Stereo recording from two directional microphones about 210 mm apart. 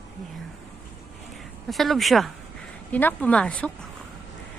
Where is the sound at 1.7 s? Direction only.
Centre (ahead or behind).